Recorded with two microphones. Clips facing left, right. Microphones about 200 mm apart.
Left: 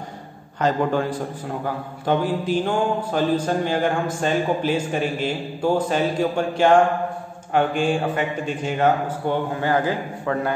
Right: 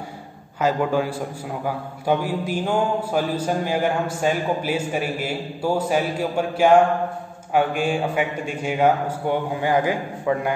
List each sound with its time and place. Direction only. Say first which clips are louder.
0.6 s a man's voice: even; 10° right (ahead or behind)